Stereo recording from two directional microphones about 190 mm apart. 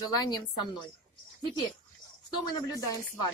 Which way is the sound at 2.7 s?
20° left (ahead or behind).